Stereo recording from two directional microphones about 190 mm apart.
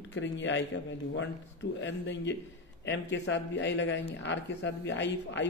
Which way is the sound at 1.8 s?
70° left (ahead or behind).